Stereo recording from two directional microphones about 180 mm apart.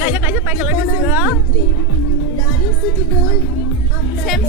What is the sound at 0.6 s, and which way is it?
Speech, 10° right (ahead or behind).